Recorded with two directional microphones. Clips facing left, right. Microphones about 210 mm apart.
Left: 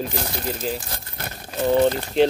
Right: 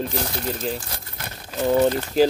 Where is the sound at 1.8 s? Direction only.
5° right (ahead or behind).